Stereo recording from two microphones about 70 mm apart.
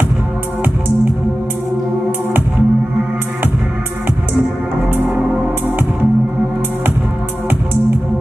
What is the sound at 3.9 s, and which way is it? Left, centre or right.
Music, right.